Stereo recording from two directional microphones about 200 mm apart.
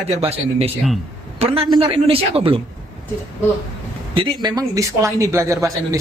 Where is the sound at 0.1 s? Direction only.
30° right (ahead or behind).